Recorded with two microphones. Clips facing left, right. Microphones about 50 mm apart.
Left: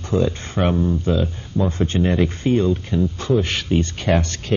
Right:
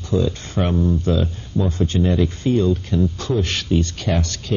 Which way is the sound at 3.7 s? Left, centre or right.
Left.